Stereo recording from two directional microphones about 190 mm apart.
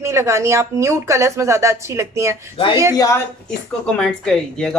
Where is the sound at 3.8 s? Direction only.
5° left (ahead or behind).